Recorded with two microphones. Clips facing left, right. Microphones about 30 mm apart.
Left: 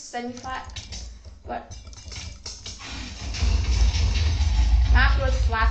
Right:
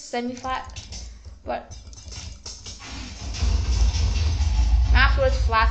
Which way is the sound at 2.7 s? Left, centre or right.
Left.